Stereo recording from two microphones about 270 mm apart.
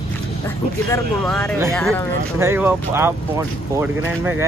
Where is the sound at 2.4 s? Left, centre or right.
Centre.